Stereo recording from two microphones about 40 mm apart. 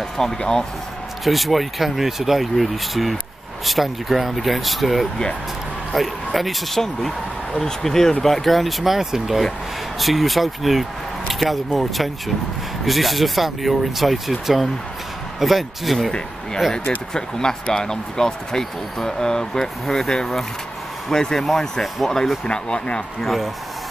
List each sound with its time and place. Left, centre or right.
0.2 s speech: centre
1.2 s speech: centre
17.1 s speech: centre
22.5 s speech: left
23.2 s speech: centre